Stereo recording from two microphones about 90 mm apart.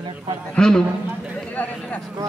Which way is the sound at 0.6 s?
10° left (ahead or behind).